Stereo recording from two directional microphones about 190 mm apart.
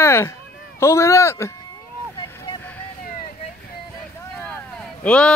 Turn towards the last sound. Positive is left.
turn(degrees=5)  # may be behind; listen again after turning